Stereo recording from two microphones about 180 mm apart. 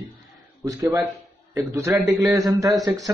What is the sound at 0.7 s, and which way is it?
A man's voice, 20° right (ahead or behind).